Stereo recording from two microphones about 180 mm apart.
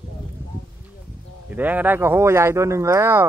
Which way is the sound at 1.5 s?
10° right (ahead or behind).